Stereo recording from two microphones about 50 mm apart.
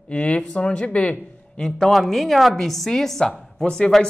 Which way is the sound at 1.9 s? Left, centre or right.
Centre.